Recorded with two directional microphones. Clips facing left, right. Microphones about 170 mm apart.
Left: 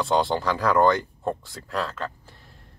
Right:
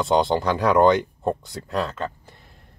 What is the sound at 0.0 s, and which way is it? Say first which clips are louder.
Speech: right 3 dB; 20° right (ahead or behind).